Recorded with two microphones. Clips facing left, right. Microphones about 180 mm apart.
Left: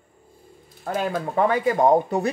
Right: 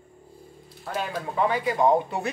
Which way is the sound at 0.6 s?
50° left (ahead or behind).